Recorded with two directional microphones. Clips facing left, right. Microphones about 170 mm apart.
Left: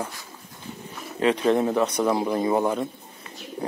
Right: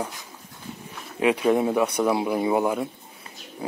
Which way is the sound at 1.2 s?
10° right (ahead or behind).